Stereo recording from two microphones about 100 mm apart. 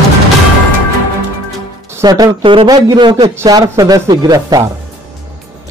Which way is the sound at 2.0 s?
35° right (ahead or behind).